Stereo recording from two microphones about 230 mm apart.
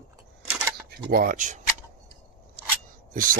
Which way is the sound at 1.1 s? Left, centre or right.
Right.